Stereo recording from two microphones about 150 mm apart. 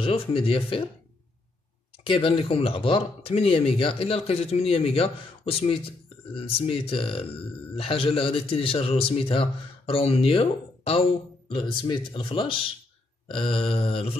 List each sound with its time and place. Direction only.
0.0 s speech: 35° left (ahead or behind)
2.0 s speech: 35° left (ahead or behind)